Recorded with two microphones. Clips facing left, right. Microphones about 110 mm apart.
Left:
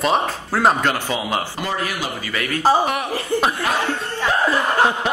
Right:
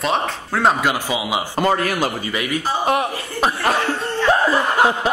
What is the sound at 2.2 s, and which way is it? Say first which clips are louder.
Speech: right 2 dB; 15° right (ahead or behind).